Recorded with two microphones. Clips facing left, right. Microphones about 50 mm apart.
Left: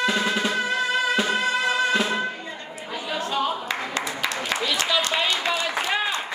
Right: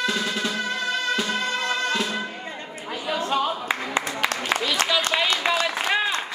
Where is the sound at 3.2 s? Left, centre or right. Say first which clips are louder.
Right 1 dB; right.